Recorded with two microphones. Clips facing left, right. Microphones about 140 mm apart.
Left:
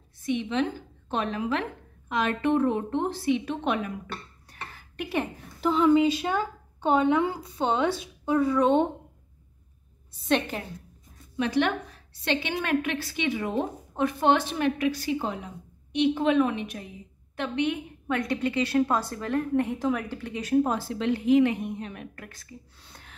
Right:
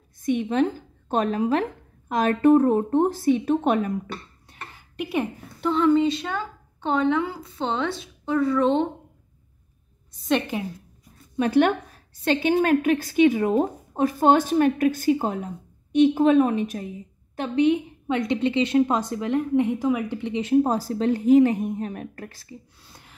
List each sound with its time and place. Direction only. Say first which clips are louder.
0.2 s a woman's voice: right 5 dB; 45° right (ahead or behind)
4.6 s a sound: right 4 dB; 10° right (ahead or behind)
5.6 s a woman's voice: right 1 dB; 5° left (ahead or behind)
10.2 s a woman's voice: right 2 dB; centre (ahead or behind)
11.3 s a woman's voice: right 6 dB; 45° right (ahead or behind); by 20.7 s 25° right (ahead or behind)
20.7 s a woman's voice: right 4 dB; 40° right (ahead or behind)
22.8 s speech: even; 10° right (ahead or behind)